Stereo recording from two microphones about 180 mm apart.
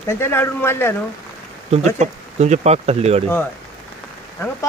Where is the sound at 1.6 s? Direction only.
40° right (ahead or behind).